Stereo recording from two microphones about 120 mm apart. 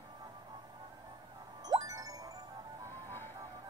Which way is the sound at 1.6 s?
30° right (ahead or behind).